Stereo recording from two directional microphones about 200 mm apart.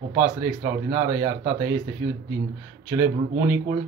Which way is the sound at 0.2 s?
10° right (ahead or behind).